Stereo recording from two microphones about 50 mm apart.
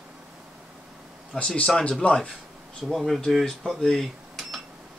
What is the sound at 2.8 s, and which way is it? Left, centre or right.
Speech, centre.